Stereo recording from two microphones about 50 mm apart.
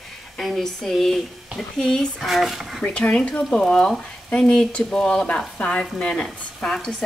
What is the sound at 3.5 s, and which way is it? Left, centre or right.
Speech, centre.